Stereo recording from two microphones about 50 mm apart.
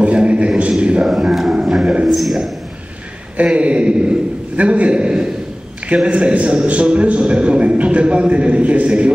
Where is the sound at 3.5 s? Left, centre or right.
Right.